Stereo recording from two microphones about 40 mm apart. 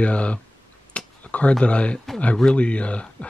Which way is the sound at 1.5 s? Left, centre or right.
Left.